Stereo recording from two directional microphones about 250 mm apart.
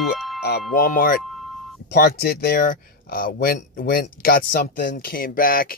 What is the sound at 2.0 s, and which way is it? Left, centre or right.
Speech, left.